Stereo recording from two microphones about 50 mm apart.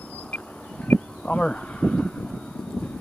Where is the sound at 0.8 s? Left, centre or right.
Left.